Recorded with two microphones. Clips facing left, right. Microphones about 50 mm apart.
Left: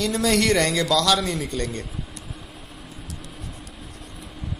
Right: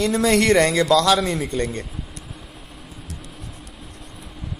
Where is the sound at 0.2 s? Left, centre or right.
Centre.